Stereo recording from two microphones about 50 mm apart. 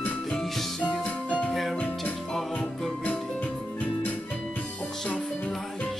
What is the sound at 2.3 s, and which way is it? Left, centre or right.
Music, centre.